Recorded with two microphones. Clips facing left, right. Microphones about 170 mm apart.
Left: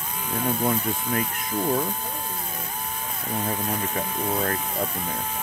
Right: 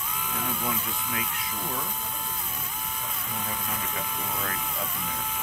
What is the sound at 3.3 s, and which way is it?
Speech, 40° left (ahead or behind).